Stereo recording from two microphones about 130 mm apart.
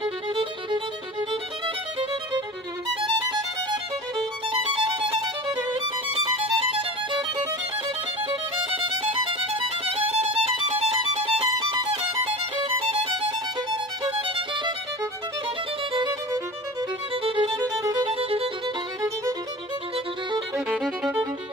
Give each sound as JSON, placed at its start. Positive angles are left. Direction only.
{"t": 0.3, "sound": "music", "side_deg": -40}
{"t": 3.0, "sound": "violin", "side_deg": -35}
{"t": 4.5, "sound": "music", "side_deg": -40}
{"t": 8.2, "sound": "violin", "side_deg": -40}
{"t": 10.7, "sound": "music", "side_deg": -55}
{"t": 11.5, "sound": "violin", "side_deg": -35}
{"t": 12.9, "sound": "music", "side_deg": -50}
{"t": 14.2, "sound": "violin", "side_deg": -40}
{"t": 15.9, "sound": "music", "side_deg": -35}
{"t": 18.1, "sound": "music", "side_deg": -50}
{"t": 20.6, "sound": "music", "side_deg": -5}